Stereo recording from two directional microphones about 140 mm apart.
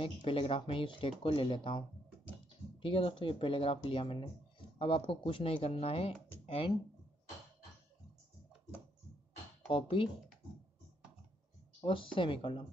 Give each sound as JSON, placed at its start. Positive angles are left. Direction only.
{"t": 0.0, "sound": "speech", "side_deg": 40}
{"t": 9.7, "sound": "speech", "side_deg": 40}
{"t": 11.8, "sound": "speech", "side_deg": 40}